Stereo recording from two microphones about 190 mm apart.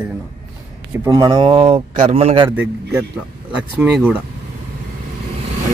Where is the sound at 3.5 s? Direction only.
5° right (ahead or behind).